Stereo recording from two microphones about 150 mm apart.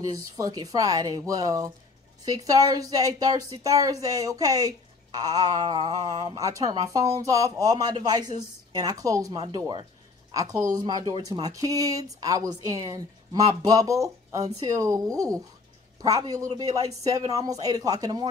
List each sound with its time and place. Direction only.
0.0 s speech: 25° right (ahead or behind)